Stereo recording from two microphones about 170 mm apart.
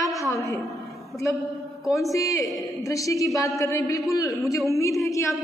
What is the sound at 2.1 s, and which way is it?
A woman's voice, 20° left (ahead or behind).